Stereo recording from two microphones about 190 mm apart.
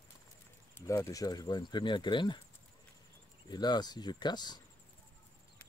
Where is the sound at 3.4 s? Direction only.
20° left (ahead or behind).